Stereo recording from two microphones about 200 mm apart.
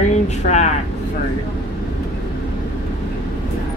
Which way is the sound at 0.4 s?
35° left (ahead or behind).